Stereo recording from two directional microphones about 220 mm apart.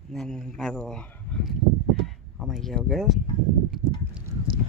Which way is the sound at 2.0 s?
Centre (ahead or behind).